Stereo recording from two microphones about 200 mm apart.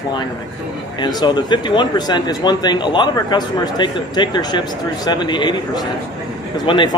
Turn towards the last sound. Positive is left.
turn(degrees=25)  # may be behind; listen again after turning